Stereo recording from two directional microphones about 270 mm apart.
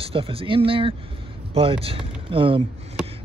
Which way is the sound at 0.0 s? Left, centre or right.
Centre.